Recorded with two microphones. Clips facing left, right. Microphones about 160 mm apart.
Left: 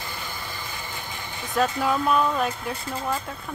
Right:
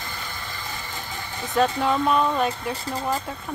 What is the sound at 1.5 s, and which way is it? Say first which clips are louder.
Speech: right 2 dB; centre (ahead or behind).